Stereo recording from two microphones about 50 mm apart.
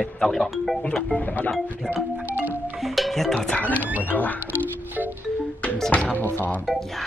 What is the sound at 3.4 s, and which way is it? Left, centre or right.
Speech, left.